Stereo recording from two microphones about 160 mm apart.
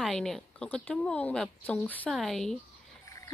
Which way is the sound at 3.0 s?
20° left (ahead or behind).